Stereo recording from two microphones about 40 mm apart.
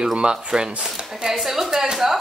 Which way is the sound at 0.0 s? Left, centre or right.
Right.